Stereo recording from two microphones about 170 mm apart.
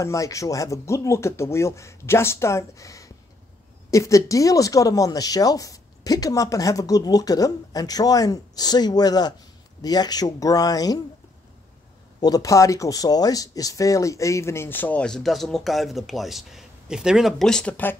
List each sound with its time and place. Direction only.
0.0 s speech: 20° left (ahead or behind)
12.2 s speech: 20° left (ahead or behind)